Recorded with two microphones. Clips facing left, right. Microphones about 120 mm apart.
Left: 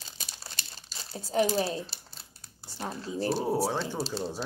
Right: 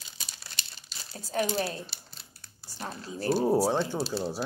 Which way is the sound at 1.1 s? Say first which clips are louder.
Left 3 dB; 25° left (ahead or behind).